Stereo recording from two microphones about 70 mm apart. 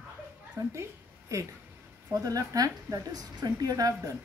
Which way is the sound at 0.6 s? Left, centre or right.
Right.